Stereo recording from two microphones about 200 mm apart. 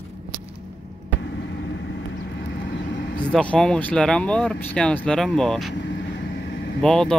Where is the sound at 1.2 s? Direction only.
60° left (ahead or behind).